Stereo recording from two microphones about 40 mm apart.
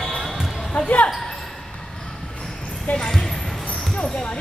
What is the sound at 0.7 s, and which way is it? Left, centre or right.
Basketball bounce, left.